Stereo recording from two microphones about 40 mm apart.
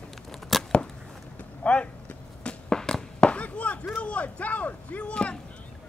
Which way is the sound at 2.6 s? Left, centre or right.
Centre.